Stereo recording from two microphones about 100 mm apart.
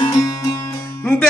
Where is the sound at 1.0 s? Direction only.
20° left (ahead or behind).